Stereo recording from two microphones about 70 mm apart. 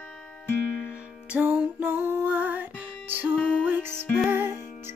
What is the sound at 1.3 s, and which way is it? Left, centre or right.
Music, centre.